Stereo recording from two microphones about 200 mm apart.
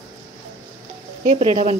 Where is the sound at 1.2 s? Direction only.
35° right (ahead or behind).